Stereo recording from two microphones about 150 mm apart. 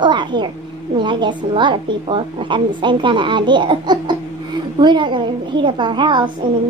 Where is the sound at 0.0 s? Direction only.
30° right (ahead or behind).